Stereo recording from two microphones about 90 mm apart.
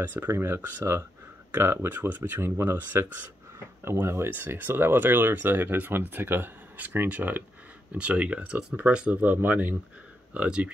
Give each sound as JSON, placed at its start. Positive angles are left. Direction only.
{"t": 0.0, "sound": "speech", "side_deg": -20}